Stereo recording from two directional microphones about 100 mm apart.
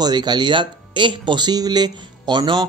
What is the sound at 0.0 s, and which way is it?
Speech, 45° right (ahead or behind).